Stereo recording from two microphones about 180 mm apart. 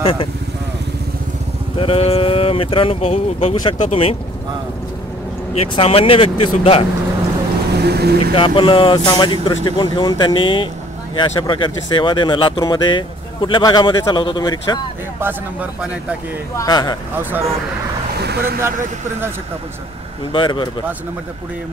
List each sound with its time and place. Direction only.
0.0 s speech: 30° left (ahead or behind)
1.8 s speech: 30° left (ahead or behind)
5.5 s speech: 35° left (ahead or behind)
7.8 s speech: 60° right (ahead or behind)
8.2 s speech: 30° left (ahead or behind)
15.1 s speech: 10° right (ahead or behind)
16.5 s speech: 20° left (ahead or behind)
17.2 s speech: 10° right (ahead or behind)
18.1 s vehicle: 65° right (ahead or behind)
20.3 s speech: 25° left (ahead or behind)